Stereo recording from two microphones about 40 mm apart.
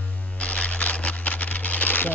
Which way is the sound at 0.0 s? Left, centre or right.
Left.